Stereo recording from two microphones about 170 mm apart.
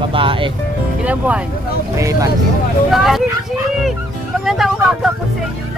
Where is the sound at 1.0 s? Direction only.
10° right (ahead or behind).